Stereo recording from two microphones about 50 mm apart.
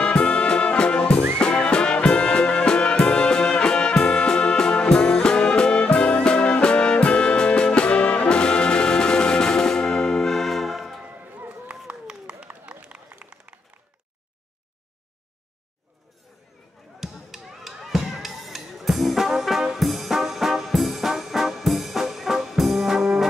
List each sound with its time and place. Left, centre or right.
0.0 s music: left; by 11.0 s centre
11.1 s run: right
17.0 s a sound: centre